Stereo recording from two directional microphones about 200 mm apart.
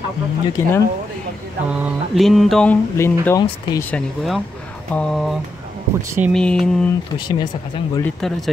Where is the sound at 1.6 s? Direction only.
5° right (ahead or behind).